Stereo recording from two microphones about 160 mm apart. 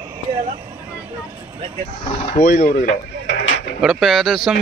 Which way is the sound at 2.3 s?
60° left (ahead or behind).